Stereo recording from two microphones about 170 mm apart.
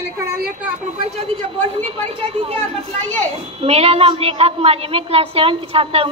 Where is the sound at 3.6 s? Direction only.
35° right (ahead or behind).